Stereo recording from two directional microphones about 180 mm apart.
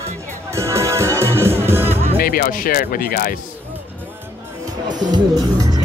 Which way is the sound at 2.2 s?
55° left (ahead or behind).